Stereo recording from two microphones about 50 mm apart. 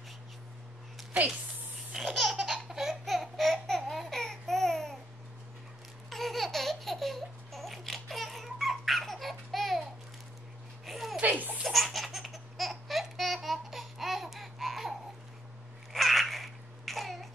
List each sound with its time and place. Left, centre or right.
2.0 s laughter: centre
6.0 s a sound: centre
10.9 s a sound: centre
11.3 s baby laughter: right
11.6 s laughter: centre
15.9 s baby cry: centre